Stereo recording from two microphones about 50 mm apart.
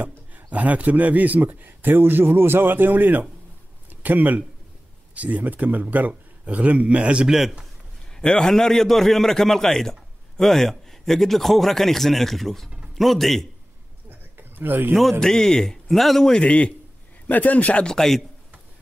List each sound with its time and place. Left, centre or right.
0.3 s a man's voice: right
7.2 s a man's voice: centre
8.2 s a man's voice: centre
14.3 s a sound: right
15.1 s a man's voice: centre
16.3 s a man's voice: left
17.8 s a man's voice: centre